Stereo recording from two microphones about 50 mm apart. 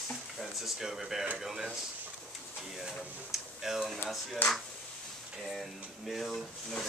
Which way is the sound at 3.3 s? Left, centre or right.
Centre.